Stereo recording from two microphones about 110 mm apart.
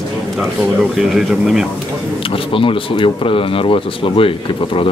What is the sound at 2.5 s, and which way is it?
Speech, 50° left (ahead or behind).